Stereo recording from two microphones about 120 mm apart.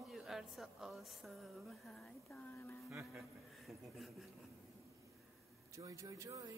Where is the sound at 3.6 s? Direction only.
Centre (ahead or behind).